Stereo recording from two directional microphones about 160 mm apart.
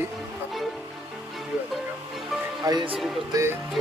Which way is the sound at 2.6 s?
30° right (ahead or behind).